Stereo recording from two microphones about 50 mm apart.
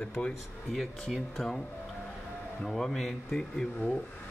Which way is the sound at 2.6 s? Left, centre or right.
Centre.